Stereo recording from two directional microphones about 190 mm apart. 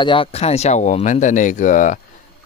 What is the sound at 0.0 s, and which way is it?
Speech, 25° left (ahead or behind).